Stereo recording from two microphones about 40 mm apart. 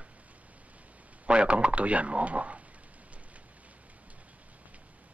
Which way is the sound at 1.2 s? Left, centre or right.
Right.